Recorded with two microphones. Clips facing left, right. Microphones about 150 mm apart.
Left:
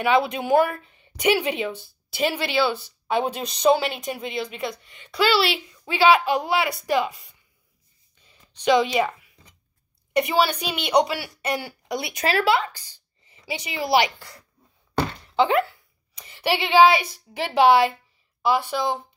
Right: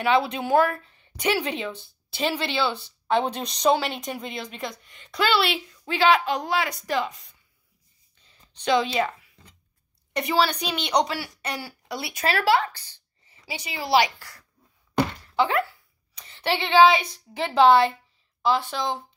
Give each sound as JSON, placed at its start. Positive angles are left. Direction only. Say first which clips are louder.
{"t": 0.0, "sound": "speech", "louder": "left 1 dB", "side_deg": 15}
{"t": 8.2, "sound": "a sound", "louder": "left 3 dB", "side_deg": 15}
{"t": 10.1, "sound": "speech", "louder": "left 2 dB", "side_deg": 10}
{"t": 15.0, "sound": "thunk", "louder": "left 2 dB", "side_deg": 20}
{"t": 16.2, "sound": "speech", "louder": "left 2 dB", "side_deg": 10}